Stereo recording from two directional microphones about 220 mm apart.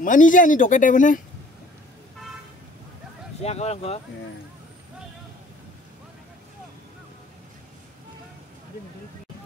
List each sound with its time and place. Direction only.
0.0 s speech: 35° left (ahead or behind)
3.4 s speech: 30° left (ahead or behind)